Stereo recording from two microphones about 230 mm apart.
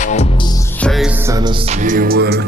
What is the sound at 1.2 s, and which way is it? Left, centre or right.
Music, centre.